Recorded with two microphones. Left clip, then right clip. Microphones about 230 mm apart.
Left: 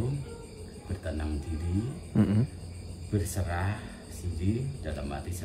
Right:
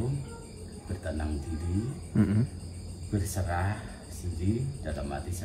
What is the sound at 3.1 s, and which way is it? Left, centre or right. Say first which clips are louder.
Speech: even; centre.